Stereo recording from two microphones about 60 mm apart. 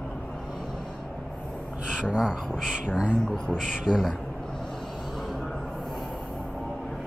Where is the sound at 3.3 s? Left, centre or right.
Centre.